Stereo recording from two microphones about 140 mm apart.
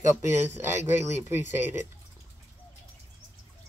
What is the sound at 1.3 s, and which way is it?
Speech, 15° right (ahead or behind).